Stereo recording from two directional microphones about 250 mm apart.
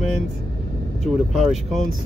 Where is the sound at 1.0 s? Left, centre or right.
Centre.